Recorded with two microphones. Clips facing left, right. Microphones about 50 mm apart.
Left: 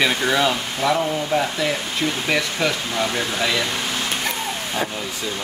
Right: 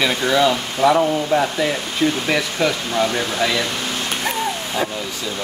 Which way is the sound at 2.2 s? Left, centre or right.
Centre.